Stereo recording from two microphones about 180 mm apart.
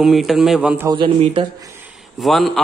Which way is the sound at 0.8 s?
25° right (ahead or behind).